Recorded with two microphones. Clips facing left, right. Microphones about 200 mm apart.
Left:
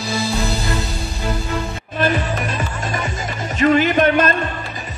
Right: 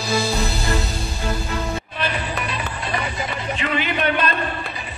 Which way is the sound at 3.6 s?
45° left (ahead or behind).